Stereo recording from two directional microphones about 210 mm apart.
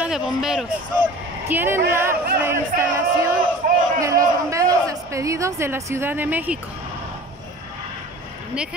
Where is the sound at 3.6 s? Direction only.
45° right (ahead or behind).